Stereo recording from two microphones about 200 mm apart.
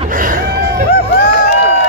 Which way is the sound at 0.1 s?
45° right (ahead or behind).